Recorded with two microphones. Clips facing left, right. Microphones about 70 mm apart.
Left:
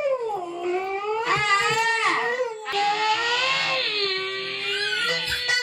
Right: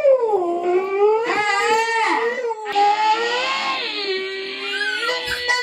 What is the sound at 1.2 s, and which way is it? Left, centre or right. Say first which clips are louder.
Baby cry: right 3 dB; right.